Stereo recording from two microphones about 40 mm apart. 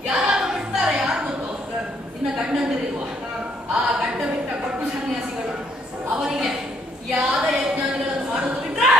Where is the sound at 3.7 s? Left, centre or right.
Right.